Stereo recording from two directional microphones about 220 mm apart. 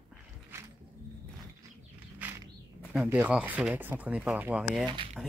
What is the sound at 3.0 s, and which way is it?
Speech, 10° right (ahead or behind).